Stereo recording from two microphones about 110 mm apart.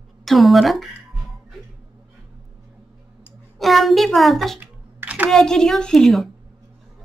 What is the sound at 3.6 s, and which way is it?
Speech, centre (ahead or behind).